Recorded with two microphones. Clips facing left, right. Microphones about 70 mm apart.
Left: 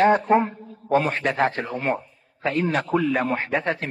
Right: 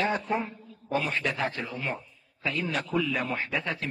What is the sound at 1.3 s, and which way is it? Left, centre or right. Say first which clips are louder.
A man's voice: left 8 dB; left.